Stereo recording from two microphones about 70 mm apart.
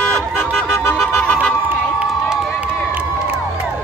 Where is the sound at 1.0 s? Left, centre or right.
Centre.